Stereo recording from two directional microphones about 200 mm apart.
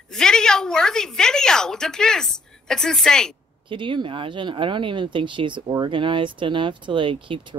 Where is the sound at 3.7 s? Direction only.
25° right (ahead or behind).